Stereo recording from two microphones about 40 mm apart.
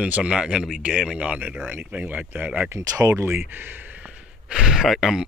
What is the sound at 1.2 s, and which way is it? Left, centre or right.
Speech, right.